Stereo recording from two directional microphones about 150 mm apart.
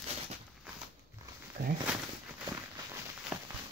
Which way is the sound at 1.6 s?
90° right.